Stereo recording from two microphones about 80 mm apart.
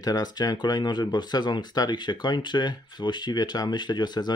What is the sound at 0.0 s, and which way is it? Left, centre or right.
Speech, left.